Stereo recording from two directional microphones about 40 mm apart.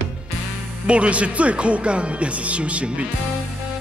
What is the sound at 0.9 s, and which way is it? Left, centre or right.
Speech, right.